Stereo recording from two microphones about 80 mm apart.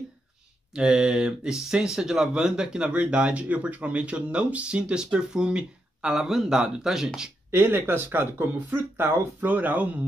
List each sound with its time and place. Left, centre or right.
0.7 s speech: centre
7.5 s speech: right